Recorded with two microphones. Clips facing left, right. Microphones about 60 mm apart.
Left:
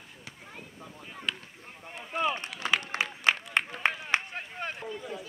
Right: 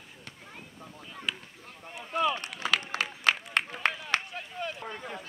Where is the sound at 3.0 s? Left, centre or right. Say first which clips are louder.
Even; centre.